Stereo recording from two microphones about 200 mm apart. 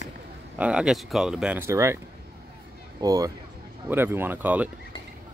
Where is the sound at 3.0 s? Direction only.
20° right (ahead or behind).